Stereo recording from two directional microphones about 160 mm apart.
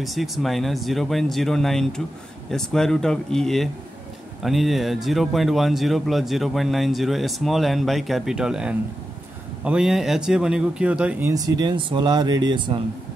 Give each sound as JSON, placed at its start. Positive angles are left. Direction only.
{"t": 0.0, "sound": "speech", "side_deg": 0}
{"t": 11.3, "sound": "speech", "side_deg": -25}